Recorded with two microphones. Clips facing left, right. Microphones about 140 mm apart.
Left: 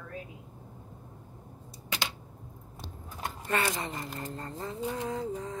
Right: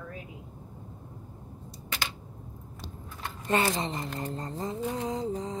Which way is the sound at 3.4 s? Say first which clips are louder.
Right 4 dB; 25° right (ahead or behind).